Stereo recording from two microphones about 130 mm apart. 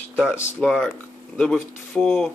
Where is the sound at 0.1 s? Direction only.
5° right (ahead or behind).